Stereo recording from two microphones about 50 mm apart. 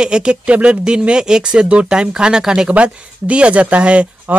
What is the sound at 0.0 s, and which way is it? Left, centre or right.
Speech, centre.